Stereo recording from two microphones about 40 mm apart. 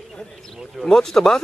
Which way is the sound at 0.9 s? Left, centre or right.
Centre.